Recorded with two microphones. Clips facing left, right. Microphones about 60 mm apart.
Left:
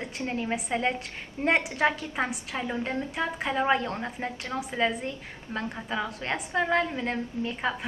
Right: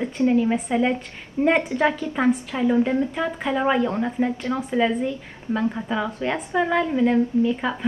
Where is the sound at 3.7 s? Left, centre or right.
Centre.